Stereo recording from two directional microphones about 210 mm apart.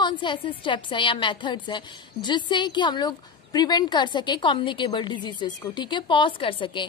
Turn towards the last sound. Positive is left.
turn(degrees=25)  # may be behind; listen again after turning